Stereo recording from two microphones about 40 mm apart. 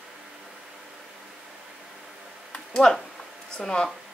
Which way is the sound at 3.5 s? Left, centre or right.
Centre.